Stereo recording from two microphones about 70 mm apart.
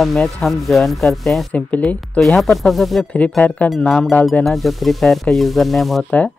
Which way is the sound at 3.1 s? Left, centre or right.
Left.